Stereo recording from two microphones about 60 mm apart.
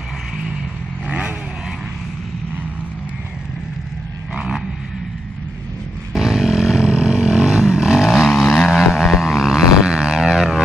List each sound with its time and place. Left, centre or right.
4.3 s a sound: centre
6.1 s vehicle: centre
8.1 s vehicle: centre
9.8 s music: centre